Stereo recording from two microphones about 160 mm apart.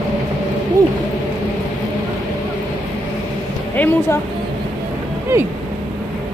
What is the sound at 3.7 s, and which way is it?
Speech, 10° left (ahead or behind).